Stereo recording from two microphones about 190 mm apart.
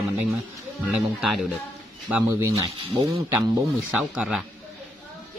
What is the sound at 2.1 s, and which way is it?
Speech, 10° right (ahead or behind).